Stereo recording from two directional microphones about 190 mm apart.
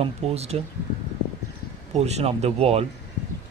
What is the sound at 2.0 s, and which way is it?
Speech, 35° right (ahead or behind).